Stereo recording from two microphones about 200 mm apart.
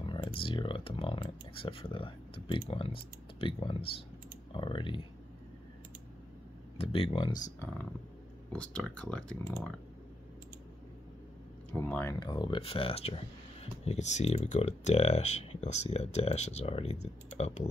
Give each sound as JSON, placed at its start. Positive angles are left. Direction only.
{"t": 0.0, "sound": "speech", "side_deg": 25}
{"t": 6.8, "sound": "speech", "side_deg": 30}
{"t": 8.5, "sound": "speech", "side_deg": 5}
{"t": 11.7, "sound": "speech", "side_deg": 10}